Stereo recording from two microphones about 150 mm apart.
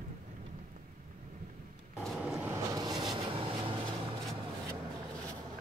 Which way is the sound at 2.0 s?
5° right (ahead or behind).